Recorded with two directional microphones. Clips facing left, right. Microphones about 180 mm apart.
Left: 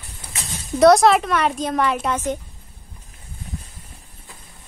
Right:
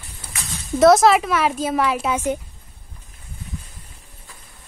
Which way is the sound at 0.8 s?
Centre (ahead or behind).